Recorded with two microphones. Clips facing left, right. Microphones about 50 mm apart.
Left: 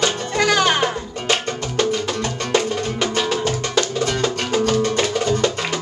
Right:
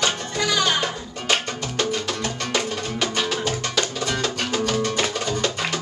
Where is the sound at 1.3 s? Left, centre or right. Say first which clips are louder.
Left 2 dB; centre.